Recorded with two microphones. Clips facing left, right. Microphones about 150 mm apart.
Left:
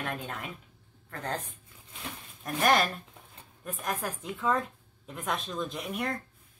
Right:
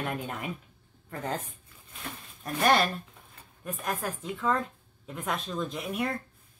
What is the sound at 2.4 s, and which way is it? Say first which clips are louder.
Speech: right 1 dB; centre (ahead or behind).